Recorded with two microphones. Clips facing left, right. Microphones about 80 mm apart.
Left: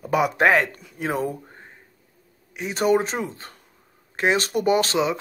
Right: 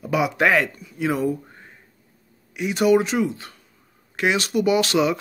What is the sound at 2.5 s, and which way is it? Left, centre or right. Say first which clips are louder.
Speech: right 3 dB; left.